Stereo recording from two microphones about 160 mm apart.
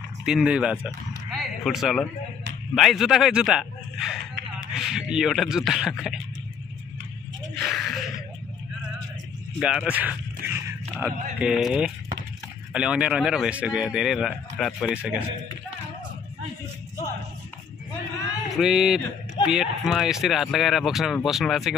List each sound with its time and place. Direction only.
0.2 s speech: 5° right (ahead or behind)
7.5 s a sound: centre (ahead or behind)
9.6 s speech: 5° right (ahead or behind)
18.6 s speech: 5° right (ahead or behind)